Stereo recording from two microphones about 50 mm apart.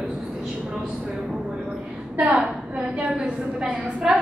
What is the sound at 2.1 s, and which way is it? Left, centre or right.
A woman's voice, right.